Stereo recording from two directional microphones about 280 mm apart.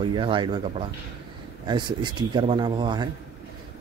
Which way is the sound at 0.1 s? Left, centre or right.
Centre.